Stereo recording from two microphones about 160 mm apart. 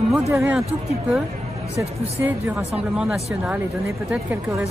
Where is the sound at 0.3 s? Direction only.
20° right (ahead or behind).